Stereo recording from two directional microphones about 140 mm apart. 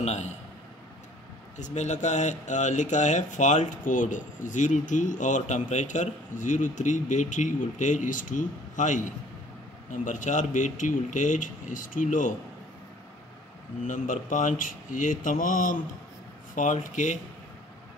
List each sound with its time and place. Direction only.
0.0 s a man's voice: 55° left (ahead or behind)
1.6 s speech: 55° left (ahead or behind)
13.8 s speech: 70° left (ahead or behind)